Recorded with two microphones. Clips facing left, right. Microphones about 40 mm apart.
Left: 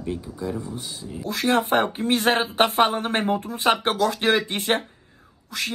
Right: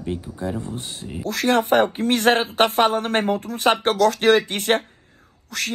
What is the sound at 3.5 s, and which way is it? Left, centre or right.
Speech, right.